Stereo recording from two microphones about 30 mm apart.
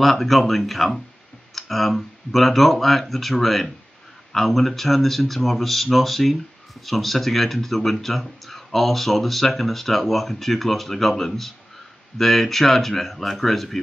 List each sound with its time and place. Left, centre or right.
0.0 s speech: centre